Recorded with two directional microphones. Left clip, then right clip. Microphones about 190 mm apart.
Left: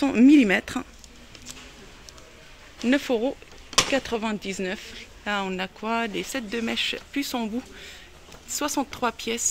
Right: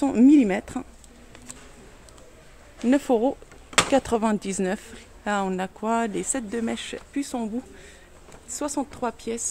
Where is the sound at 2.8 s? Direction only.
25° right (ahead or behind).